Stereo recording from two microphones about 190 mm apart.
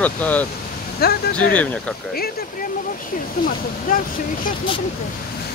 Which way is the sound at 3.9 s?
50° left (ahead or behind).